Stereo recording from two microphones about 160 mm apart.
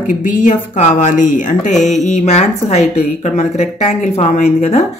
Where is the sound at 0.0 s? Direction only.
55° left (ahead or behind).